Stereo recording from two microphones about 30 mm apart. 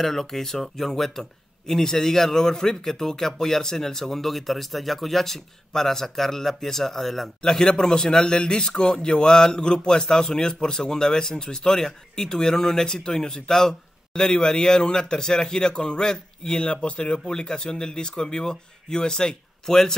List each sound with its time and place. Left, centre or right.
0.0 s a man's voice: centre
7.4 s a man's voice: centre
16.9 s speech: left
17.3 s a man's voice: left
19.7 s a man's voice: centre